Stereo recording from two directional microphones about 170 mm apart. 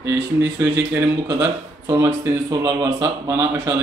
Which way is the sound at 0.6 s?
15° right (ahead or behind).